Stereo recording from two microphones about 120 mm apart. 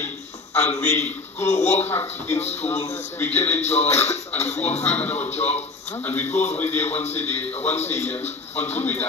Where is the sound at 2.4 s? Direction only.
65° left (ahead or behind).